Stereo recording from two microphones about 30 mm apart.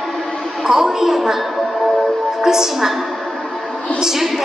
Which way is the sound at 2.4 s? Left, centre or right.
Centre.